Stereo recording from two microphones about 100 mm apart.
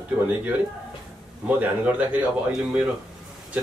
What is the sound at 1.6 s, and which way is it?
Speech, 15° right (ahead or behind).